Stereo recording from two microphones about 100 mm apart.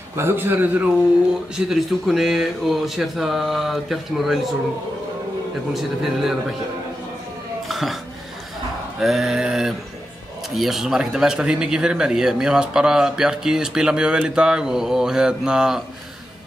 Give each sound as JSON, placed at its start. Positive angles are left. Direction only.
{"t": 0.1, "sound": "a man's voice", "side_deg": -25}
{"t": 1.7, "sound": "speech", "side_deg": 0}
{"t": 5.7, "sound": "speech", "side_deg": 0}
{"t": 7.6, "sound": "a sound", "side_deg": 0}
{"t": 9.0, "sound": "speech", "side_deg": -5}